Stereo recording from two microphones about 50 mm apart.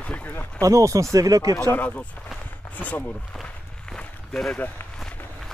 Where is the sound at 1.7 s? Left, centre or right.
Left.